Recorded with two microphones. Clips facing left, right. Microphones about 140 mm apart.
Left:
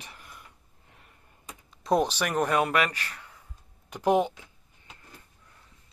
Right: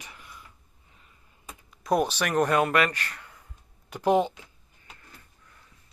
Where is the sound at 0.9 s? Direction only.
60° left (ahead or behind).